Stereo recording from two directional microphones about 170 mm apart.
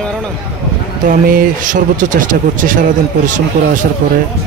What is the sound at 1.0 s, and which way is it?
Speech, 55° right (ahead or behind).